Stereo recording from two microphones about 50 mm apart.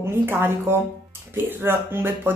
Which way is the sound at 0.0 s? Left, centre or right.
Right.